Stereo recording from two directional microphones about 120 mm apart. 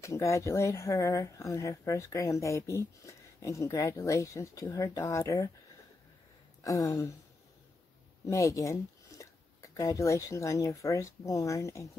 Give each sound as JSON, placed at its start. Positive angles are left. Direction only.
{"t": 0.0, "sound": "speech", "side_deg": 25}
{"t": 6.6, "sound": "speech", "side_deg": 25}
{"t": 8.3, "sound": "speech", "side_deg": 25}